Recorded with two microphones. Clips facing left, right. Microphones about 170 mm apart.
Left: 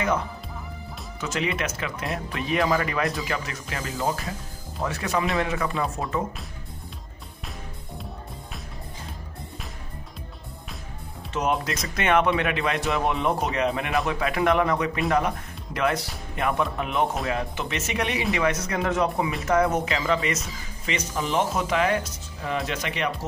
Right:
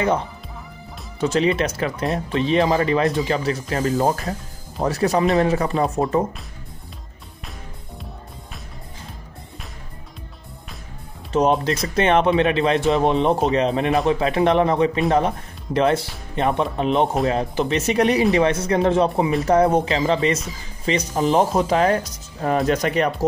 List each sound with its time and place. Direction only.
1.2 s speech: 35° right (ahead or behind)
11.3 s speech: 30° right (ahead or behind)